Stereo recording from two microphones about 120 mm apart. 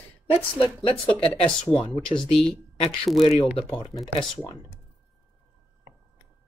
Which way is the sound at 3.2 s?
50° left (ahead or behind).